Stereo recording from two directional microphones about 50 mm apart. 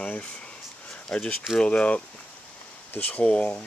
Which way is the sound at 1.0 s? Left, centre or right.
Centre.